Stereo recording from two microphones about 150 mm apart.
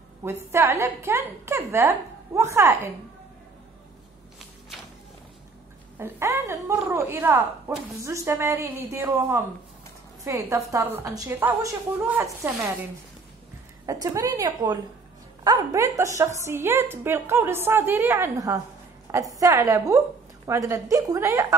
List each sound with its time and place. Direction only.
0.2 s a woman's voice: 15° right (ahead or behind)
5.9 s a woman's voice: 15° right (ahead or behind)
13.8 s a woman's voice: 20° right (ahead or behind)